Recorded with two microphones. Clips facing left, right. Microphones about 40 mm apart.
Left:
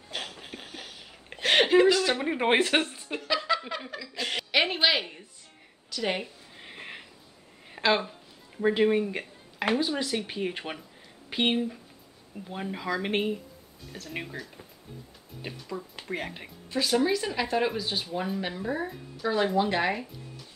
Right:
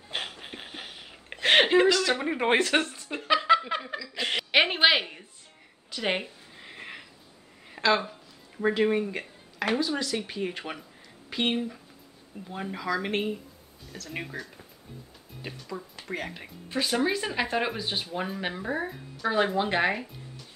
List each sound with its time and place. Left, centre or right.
0.1 s a sound: right
1.9 s a woman's voice: centre
2.1 s speech: centre
3.2 s a sound: centre
4.1 s a woman's voice: centre
6.5 s a sound: centre
7.8 s a sound: centre
8.8 s speech: centre
9.6 s speech: centre
11.5 s speech: centre
12.7 s speech: centre
14.2 s speech: centre
16.7 s speech: centre